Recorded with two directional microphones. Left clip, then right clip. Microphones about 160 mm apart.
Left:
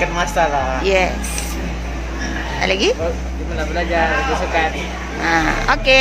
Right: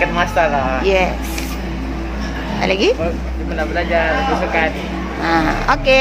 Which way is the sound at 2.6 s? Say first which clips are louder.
Right 2 dB; 10° right (ahead or behind).